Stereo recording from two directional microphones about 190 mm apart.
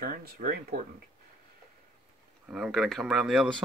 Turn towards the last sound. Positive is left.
turn(degrees=0)  # may be behind; listen again after turning